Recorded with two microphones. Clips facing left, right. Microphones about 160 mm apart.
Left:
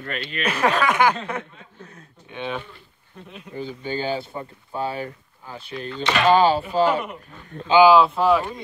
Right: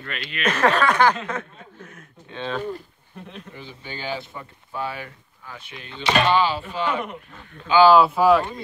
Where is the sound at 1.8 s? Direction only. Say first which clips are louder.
Left 1 dB; 35° left (ahead or behind).